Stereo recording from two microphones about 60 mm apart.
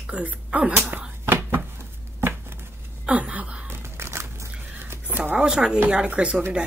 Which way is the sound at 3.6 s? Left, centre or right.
Right.